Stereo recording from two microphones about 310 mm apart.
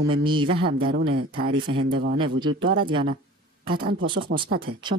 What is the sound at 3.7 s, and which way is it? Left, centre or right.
Speech, right.